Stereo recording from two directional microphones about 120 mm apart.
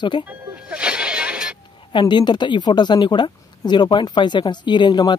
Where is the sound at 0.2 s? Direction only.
15° right (ahead or behind).